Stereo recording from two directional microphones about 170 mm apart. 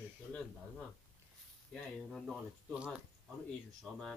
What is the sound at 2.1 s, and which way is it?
Speech, 5° right (ahead or behind).